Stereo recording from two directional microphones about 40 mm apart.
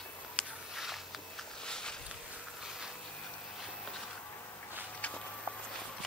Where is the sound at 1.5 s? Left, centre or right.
Left.